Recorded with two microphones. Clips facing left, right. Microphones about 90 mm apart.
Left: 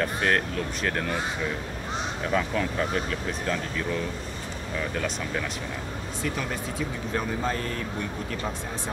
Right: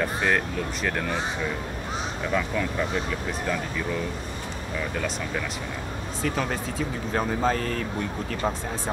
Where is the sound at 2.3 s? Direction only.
5° left (ahead or behind).